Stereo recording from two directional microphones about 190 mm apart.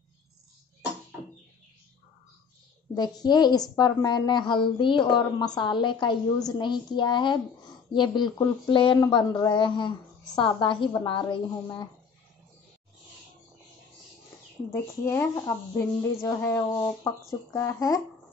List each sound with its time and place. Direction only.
2.9 s a woman's voice: 20° left (ahead or behind)
14.7 s a woman's voice: 15° left (ahead or behind)